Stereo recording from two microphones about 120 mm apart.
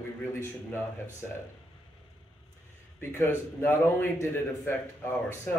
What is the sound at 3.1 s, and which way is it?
A man's voice, 20° left (ahead or behind).